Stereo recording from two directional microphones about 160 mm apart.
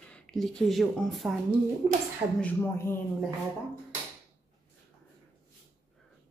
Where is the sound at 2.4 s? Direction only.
15° left (ahead or behind).